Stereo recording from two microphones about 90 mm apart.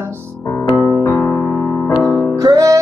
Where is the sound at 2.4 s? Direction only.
40° right (ahead or behind).